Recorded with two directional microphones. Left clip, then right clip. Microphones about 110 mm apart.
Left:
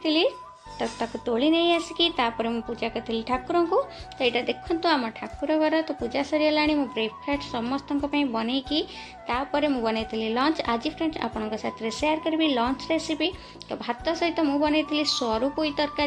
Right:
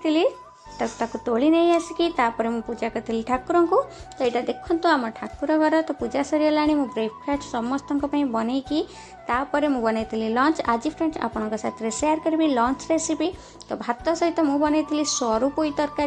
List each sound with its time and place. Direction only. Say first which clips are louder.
0.0 s music: right 2 dB; 25° right (ahead or behind)
0.7 s a woman's voice: right 3 dB; 25° right (ahead or behind)
2.7 s a woman's voice: right 2 dB; 40° right (ahead or behind); by 5.5 s 25° right (ahead or behind)
5.5 s a woman's voice: right 3 dB; 35° right (ahead or behind)